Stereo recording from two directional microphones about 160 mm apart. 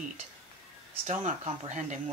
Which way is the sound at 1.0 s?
40° right (ahead or behind).